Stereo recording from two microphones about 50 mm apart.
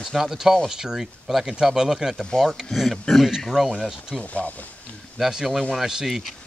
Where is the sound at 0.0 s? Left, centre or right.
Centre.